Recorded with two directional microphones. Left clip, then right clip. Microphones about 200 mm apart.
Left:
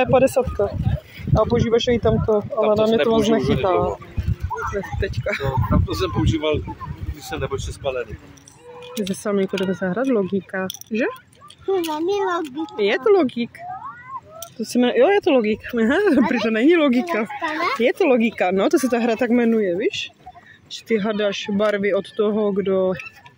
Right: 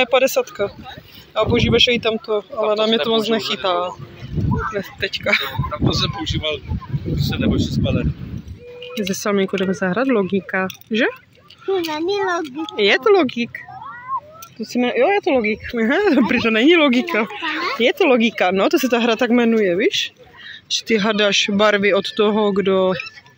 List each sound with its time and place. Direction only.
0.0 s speech: 5° left (ahead or behind)
5.7 s speech: 45° left (ahead or behind)
9.0 s speech: 5° left (ahead or behind)
14.6 s speech: 25° left (ahead or behind); by 22.9 s centre (ahead or behind)